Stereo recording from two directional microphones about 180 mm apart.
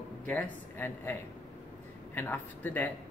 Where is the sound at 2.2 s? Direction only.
10° left (ahead or behind).